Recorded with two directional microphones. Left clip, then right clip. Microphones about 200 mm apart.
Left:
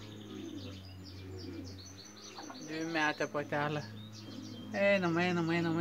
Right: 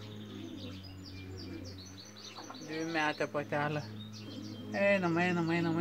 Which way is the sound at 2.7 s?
5° left (ahead or behind).